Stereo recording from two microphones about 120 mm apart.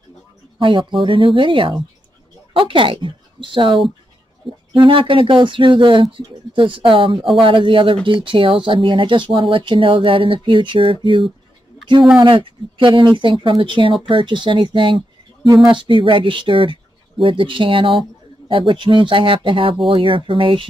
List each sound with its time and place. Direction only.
0.6 s speech: 45° right (ahead or behind)